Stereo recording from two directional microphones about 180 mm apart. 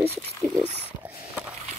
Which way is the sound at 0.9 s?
10° right (ahead or behind).